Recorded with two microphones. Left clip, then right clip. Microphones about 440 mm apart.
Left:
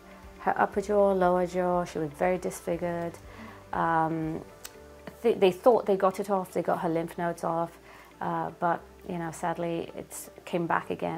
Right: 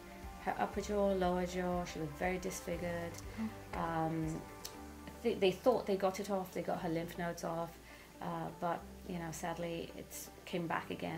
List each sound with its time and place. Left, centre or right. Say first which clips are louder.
0.5 s a woman's voice: left 11 dB; left
5.2 s a woman's voice: left 10 dB; left